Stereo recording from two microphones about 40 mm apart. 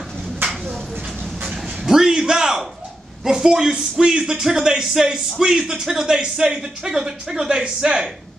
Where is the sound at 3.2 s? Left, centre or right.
Centre.